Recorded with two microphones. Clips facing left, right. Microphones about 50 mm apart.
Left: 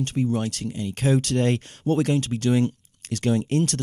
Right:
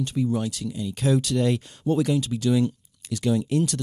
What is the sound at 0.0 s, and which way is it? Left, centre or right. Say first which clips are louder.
Speech: left 1 dB; left.